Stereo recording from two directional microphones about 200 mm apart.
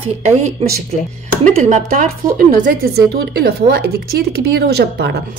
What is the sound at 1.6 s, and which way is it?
Speech, 40° right (ahead or behind).